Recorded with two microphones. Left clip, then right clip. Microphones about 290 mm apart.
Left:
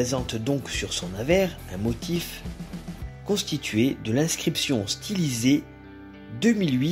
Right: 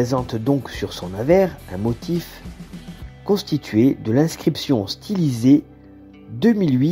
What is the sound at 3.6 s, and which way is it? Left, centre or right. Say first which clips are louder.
Speech: right 8 dB; centre.